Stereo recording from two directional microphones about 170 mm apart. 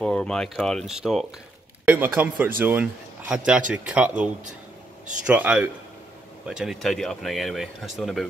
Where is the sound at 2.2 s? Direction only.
10° right (ahead or behind).